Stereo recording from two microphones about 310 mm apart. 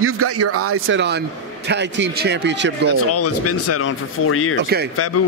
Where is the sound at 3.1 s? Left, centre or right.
Left.